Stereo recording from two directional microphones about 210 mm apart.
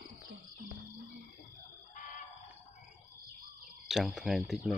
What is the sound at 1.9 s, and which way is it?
Chicken, 35° left (ahead or behind).